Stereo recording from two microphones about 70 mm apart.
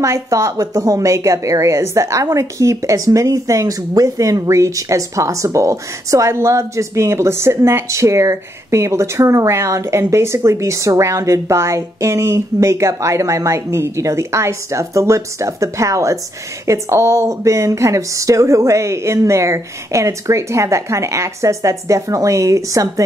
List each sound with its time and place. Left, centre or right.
0.0 s speech: right